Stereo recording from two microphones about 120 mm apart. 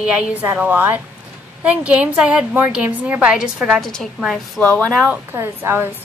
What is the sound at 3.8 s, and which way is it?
A woman's voice, 5° left (ahead or behind).